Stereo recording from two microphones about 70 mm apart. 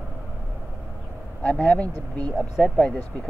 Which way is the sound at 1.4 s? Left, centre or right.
Centre.